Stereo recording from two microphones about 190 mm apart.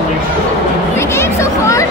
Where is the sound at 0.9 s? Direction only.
15° left (ahead or behind).